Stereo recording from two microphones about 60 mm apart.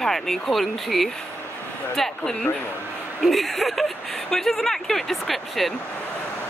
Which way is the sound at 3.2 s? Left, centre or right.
Centre.